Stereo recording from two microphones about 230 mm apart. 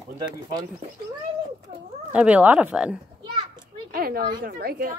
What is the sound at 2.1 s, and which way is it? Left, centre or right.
Speech, centre.